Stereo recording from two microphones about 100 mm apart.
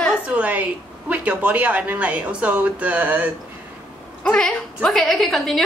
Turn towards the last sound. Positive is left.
turn(degrees=0)  # may be behind; listen again after turning